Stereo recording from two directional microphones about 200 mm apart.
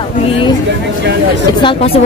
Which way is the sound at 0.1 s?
30° left (ahead or behind).